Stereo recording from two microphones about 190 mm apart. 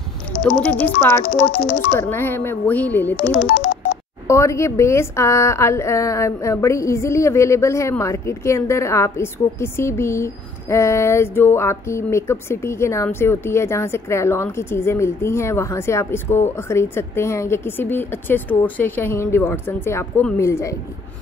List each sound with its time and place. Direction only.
0.7 s speech: 5° left (ahead or behind)
1.5 s speech: 50° left (ahead or behind)
2.0 s speech: 10° left (ahead or behind)
3.2 s speech: 50° left (ahead or behind)
4.3 s speech: 15° left (ahead or behind)